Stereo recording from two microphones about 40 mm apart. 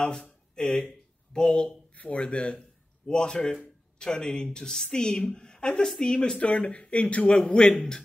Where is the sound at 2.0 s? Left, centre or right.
Left.